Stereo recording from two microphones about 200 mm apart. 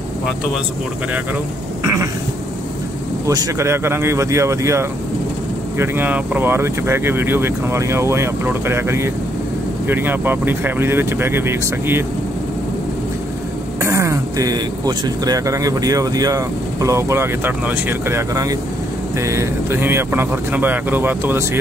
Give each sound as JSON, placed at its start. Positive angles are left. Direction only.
{"t": 3.3, "sound": "speech", "side_deg": -15}
{"t": 13.7, "sound": "speech", "side_deg": -15}